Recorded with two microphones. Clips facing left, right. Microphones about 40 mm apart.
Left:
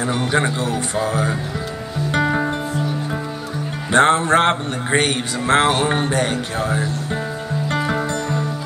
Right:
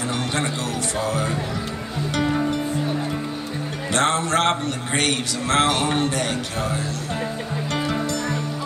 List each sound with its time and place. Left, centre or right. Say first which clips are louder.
0.0 s speech: left 5 dB; centre
2.0 s music: left 4 dB; left
3.9 s music: left 7 dB; left